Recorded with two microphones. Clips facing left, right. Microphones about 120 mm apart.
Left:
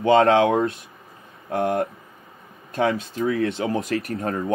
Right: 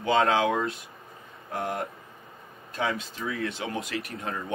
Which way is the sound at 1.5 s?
60° left (ahead or behind).